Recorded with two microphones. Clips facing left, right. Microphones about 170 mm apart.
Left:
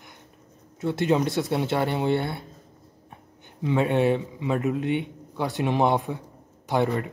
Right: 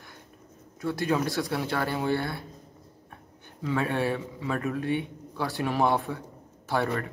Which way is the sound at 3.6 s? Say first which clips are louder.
Left 6 dB; 20° left (ahead or behind).